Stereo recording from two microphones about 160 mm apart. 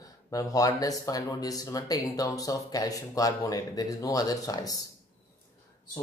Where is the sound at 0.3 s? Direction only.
20° left (ahead or behind).